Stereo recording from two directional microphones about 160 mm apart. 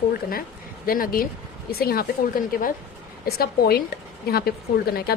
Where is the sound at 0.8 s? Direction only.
65° left (ahead or behind).